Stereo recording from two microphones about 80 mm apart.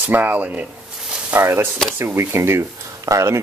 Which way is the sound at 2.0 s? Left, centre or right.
Right.